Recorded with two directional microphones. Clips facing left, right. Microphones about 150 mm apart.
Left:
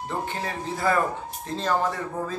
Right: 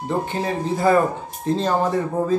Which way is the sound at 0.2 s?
20° right (ahead or behind).